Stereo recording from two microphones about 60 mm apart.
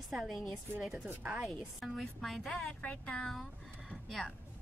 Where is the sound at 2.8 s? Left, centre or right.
Centre.